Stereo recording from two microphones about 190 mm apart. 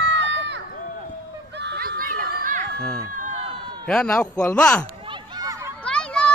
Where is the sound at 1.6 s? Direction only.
60° right (ahead or behind); by 2.7 s 45° right (ahead or behind).